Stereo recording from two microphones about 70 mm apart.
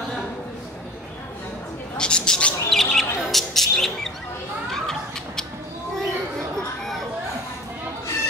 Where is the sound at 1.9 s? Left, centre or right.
Centre.